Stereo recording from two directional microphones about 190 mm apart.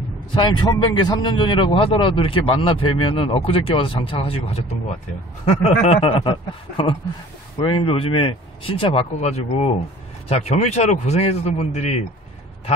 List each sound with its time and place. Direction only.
0.3 s a man's voice: 25° left (ahead or behind)
7.5 s speech: 25° left (ahead or behind)